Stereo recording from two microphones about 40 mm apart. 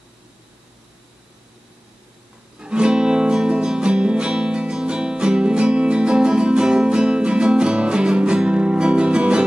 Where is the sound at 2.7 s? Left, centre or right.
Right.